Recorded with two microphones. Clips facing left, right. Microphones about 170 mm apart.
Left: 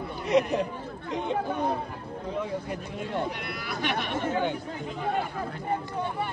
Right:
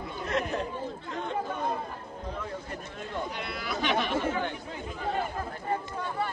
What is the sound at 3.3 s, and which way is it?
Speech, 55° left (ahead or behind).